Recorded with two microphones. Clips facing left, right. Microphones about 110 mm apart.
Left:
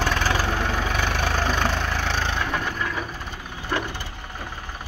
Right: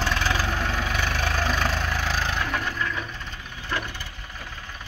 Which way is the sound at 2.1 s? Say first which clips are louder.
Left 1 dB; 25° left (ahead or behind).